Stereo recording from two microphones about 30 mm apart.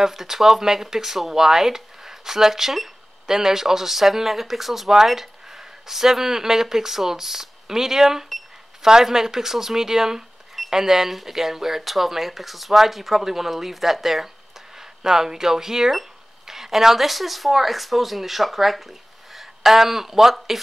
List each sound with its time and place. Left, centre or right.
0.0 s speech: centre
14.8 s speech: centre